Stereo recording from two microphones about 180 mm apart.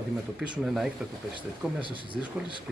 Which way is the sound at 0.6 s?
5° right (ahead or behind).